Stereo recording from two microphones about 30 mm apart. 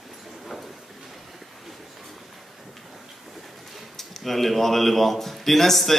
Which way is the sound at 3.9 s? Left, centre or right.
Centre.